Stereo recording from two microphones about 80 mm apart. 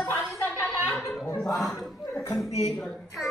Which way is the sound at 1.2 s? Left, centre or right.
Left.